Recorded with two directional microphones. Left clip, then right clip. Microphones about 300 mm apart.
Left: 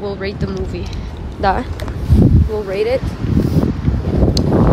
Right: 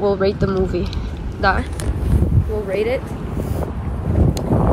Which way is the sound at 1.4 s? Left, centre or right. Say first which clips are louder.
Left 2 dB; centre.